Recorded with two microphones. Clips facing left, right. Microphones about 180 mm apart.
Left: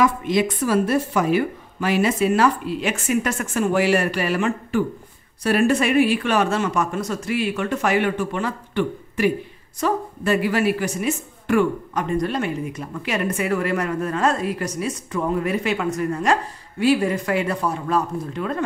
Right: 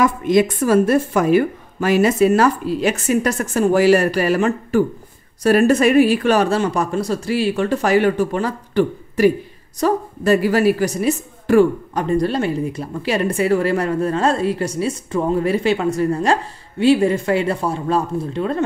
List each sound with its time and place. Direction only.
0.0 s a woman's voice: 45° right (ahead or behind); by 18.6 s 30° right (ahead or behind)